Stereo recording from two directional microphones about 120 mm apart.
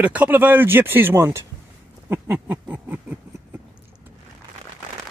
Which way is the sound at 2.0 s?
15° right (ahead or behind).